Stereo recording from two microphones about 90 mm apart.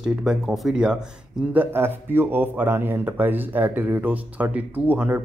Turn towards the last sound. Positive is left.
turn(degrees=-20)  # may be behind; listen again after turning